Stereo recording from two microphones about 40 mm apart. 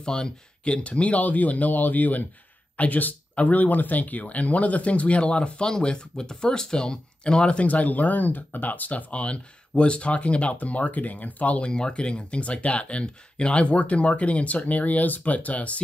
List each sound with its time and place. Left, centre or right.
0.0 s speech: centre
0.7 s speech: left
7.6 s speech: left
11.6 s speech: left